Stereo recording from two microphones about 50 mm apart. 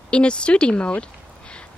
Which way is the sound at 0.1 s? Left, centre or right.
Left.